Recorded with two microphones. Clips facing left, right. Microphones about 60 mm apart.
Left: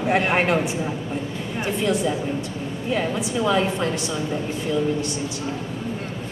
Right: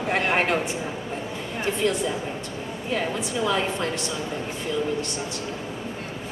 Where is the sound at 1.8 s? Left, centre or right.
Centre.